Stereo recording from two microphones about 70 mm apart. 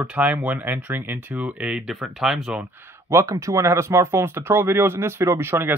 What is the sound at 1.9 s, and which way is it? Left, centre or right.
Speech, centre.